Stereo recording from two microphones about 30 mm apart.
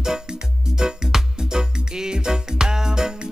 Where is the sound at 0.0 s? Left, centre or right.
Right.